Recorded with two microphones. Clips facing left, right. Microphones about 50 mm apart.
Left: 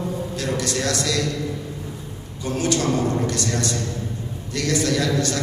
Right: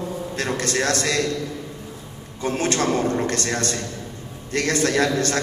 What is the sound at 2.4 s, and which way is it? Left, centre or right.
A man's voice, right.